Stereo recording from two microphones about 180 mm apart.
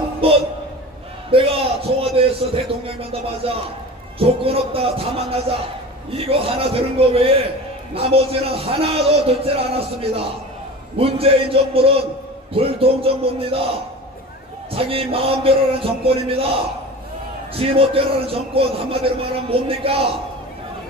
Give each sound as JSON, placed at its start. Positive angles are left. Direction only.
{"t": 0.2, "sound": "a man's voice", "side_deg": -30}
{"t": 1.3, "sound": "a sound", "side_deg": -30}
{"t": 4.2, "sound": "a man's voice", "side_deg": -30}
{"t": 17.6, "sound": "a man's voice", "side_deg": -30}